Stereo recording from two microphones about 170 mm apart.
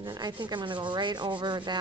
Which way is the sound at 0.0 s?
25° right (ahead or behind).